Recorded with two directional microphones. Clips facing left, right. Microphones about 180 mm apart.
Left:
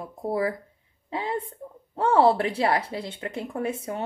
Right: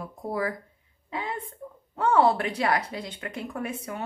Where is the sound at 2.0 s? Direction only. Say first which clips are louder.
Left 2 dB; 30° left (ahead or behind).